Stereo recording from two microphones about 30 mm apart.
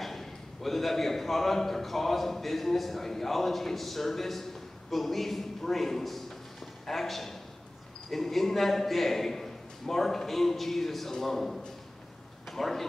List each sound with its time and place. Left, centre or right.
0.0 s a man's voice: centre